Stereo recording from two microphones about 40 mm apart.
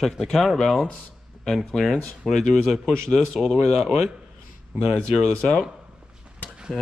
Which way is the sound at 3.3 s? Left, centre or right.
Centre.